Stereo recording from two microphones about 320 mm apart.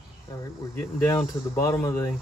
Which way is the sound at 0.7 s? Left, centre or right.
Centre.